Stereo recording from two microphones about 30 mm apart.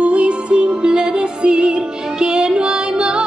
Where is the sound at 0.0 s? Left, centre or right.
Right.